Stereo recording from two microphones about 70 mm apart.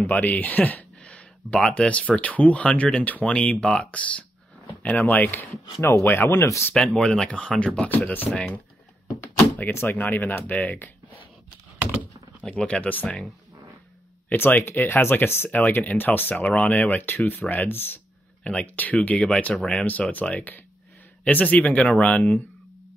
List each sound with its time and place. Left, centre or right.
0.1 s speech: left
5.8 s speech: left
6.7 s speech: centre
7.9 s speech: left
9.6 s speech: left
12.4 s speech: centre
14.3 s speech: left
18.4 s speech: centre